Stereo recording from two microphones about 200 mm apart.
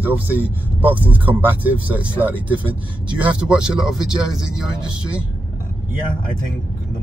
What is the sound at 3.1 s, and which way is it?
Speech, 5° right (ahead or behind).